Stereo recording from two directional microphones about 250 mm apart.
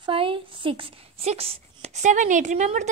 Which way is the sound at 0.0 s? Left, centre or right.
Right.